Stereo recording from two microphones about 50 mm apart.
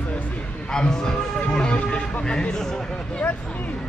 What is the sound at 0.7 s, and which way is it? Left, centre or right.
Speech, centre.